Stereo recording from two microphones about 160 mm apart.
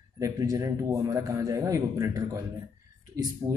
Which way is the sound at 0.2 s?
20° right (ahead or behind).